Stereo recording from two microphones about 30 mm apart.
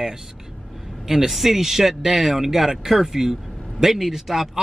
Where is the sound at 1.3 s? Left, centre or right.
Centre.